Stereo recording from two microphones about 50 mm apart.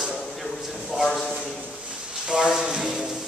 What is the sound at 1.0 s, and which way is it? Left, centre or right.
Speech, centre.